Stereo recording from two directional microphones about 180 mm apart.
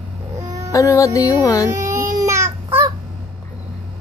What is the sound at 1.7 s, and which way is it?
Baby cry, 15° right (ahead or behind).